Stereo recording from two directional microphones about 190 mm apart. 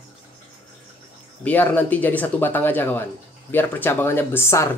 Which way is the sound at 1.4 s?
10° left (ahead or behind).